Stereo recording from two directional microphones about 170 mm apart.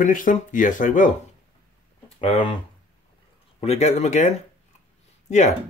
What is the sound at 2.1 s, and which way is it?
Speech, 30° left (ahead or behind).